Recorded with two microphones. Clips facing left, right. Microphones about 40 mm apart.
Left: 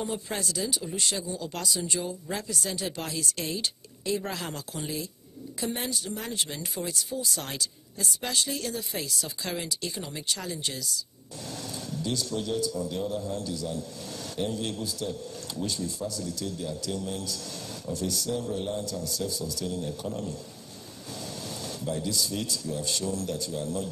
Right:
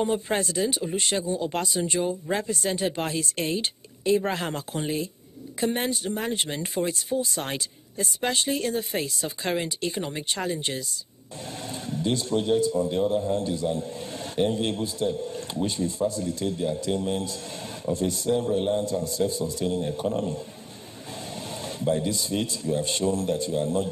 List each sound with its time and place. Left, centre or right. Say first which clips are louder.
0.0 s a man's voice: right 7 dB; right